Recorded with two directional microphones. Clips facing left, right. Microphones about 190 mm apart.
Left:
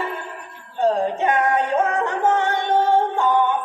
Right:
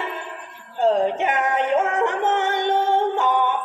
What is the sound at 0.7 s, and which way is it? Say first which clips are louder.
Music: right 1 dB; 20° right (ahead or behind).